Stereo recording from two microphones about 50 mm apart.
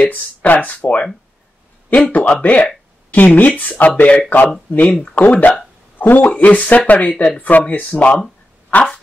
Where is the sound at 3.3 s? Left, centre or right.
Left.